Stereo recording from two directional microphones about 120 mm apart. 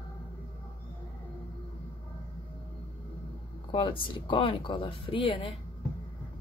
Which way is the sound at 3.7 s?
45° left (ahead or behind).